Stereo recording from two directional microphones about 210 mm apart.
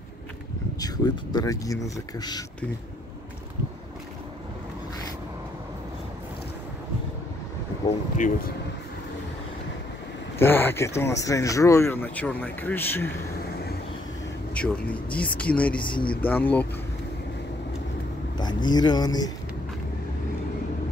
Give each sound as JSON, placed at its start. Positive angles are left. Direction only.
{"t": 0.7, "sound": "speech", "side_deg": 20}
{"t": 8.2, "sound": "speech", "side_deg": 45}
{"t": 10.4, "sound": "speech", "side_deg": 10}
{"t": 14.5, "sound": "speech", "side_deg": 5}
{"t": 15.8, "sound": "speech", "side_deg": 25}
{"t": 16.2, "sound": "speech", "side_deg": 10}
{"t": 18.4, "sound": "speech", "side_deg": 20}